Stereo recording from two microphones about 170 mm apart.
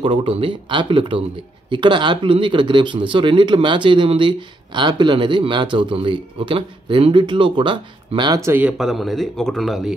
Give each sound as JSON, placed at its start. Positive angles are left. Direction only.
{"t": 0.0, "sound": "speech", "side_deg": -30}
{"t": 8.5, "sound": "speech", "side_deg": -10}